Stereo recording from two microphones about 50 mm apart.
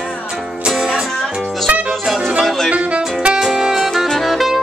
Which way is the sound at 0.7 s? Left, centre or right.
Centre.